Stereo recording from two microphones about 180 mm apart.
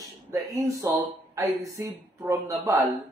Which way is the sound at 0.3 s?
20° right (ahead or behind).